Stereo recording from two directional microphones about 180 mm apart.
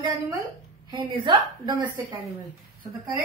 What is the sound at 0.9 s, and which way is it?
Speech, 25° right (ahead or behind).